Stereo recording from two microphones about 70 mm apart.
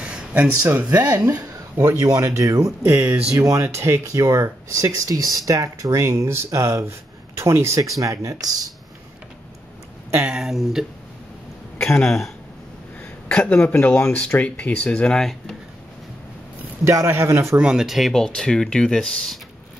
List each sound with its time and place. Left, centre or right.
0.3 s speech: right
0.8 s speech: right
1.9 s speech: right
2.8 s speech: right
8.0 s speech: right
10.3 s speech: centre
12.0 s speech: centre
13.3 s speech: centre
13.7 s speech: left
15.1 s speech: centre
16.8 s a man's voice: right
17.6 s speech: centre